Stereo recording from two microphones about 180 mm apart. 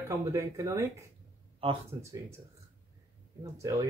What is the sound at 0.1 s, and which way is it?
Speech, 15° right (ahead or behind).